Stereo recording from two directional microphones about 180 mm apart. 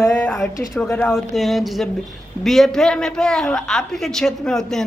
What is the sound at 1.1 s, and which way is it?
A woman's voice, centre (ahead or behind).